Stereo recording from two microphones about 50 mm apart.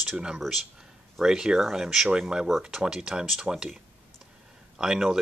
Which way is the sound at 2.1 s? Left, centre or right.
Centre.